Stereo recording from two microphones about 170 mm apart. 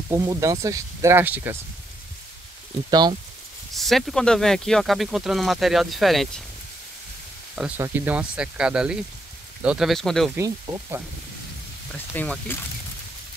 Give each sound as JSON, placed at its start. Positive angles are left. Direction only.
{"t": 0.1, "sound": "speech", "side_deg": -20}
{"t": 2.9, "sound": "speech", "side_deg": -25}
{"t": 3.7, "sound": "speech", "side_deg": 0}
{"t": 7.5, "sound": "speech", "side_deg": -5}
{"t": 10.3, "sound": "speech", "side_deg": -15}
{"t": 11.9, "sound": "speech", "side_deg": 10}